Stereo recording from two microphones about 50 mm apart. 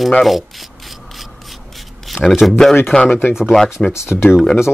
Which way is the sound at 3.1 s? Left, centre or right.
Left.